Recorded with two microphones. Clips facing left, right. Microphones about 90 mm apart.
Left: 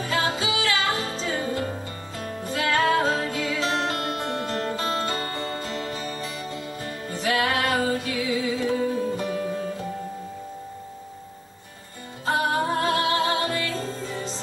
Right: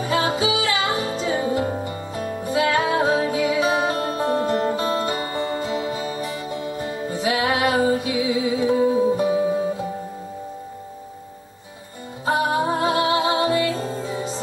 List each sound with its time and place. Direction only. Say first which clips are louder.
0.0 s music: right 5 dB; 20° right (ahead or behind)
12.3 s music: right 3 dB; 15° right (ahead or behind)